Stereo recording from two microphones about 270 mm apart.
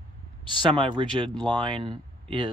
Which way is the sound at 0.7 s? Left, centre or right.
Centre.